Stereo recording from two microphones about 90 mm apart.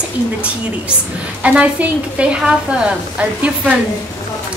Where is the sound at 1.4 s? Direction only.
15° right (ahead or behind).